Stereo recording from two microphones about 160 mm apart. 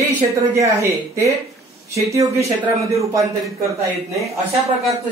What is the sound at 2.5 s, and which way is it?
Speech, 20° right (ahead or behind).